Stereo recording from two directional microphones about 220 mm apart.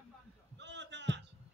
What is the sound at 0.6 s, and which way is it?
Heart sounds, 55° right (ahead or behind).